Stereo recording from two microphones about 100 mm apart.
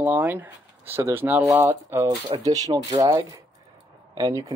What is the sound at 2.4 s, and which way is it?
Speech, 40° right (ahead or behind).